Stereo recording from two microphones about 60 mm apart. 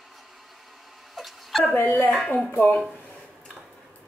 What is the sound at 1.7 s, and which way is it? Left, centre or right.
Speech, left.